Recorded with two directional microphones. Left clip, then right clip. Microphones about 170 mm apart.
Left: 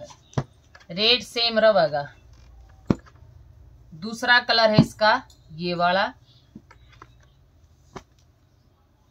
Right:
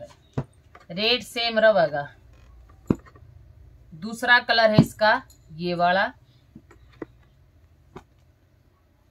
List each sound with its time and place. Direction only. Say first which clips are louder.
0.8 s speech: left 3 dB; centre (ahead or behind)
4.0 s speech: even; 5° right (ahead or behind)
7.9 s a sound: left 4 dB; 45° left (ahead or behind)